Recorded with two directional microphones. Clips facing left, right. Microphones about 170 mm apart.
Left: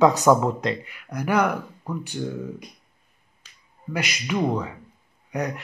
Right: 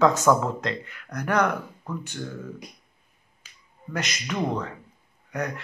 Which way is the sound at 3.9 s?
10° left (ahead or behind).